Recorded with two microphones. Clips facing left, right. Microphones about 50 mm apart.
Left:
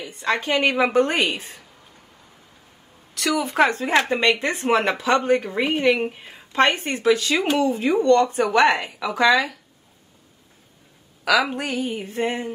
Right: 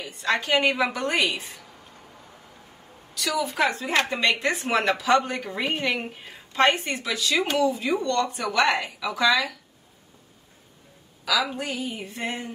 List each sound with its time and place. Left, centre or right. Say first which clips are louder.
0.2 s a woman's voice: left 1 dB; left
3.3 s a woman's voice: left 5 dB; left
4.1 s speech: left 3 dB; left
11.2 s a woman's voice: left 5 dB; left